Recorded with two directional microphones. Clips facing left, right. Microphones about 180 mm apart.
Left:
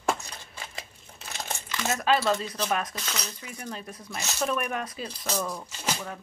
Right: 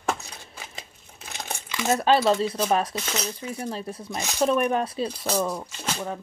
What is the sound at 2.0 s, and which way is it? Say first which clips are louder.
Speech: right 4 dB; 30° right (ahead or behind).